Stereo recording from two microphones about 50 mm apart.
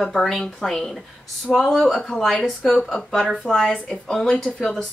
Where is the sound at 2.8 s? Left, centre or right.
Centre.